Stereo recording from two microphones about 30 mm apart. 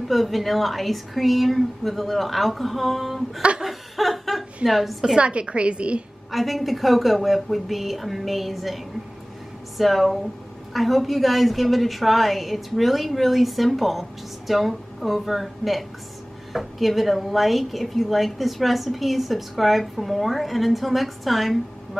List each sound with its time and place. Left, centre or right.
0.1 s a woman's voice: centre
3.6 s laughter: centre
4.6 s a woman's voice: centre
5.1 s a woman's voice: right
6.3 s a woman's voice: centre